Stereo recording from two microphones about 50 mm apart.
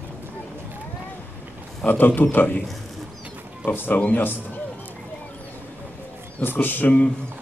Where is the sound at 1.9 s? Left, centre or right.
Left.